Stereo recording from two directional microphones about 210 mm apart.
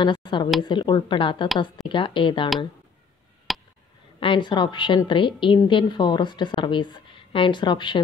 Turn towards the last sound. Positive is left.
turn(degrees=20)  # may be behind; listen again after turning